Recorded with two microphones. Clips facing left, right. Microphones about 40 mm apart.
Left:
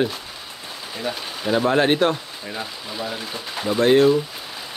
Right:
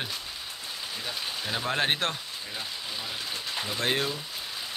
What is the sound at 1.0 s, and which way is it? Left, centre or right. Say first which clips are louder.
A man's voice: left 9 dB; centre.